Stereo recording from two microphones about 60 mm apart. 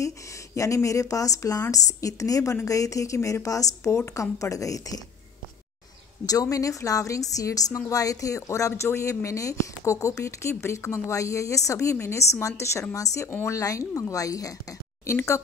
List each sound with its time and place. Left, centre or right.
0.8 s a woman's voice: left
6.2 s a woman's voice: left
8.8 s speech: left
9.2 s a woman's voice: left
12.9 s a woman's voice: left
13.3 s speech: left
13.6 s a woman's voice: left
15.1 s a woman's voice: left